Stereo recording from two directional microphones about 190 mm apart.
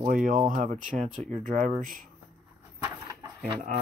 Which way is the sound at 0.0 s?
45° right (ahead or behind).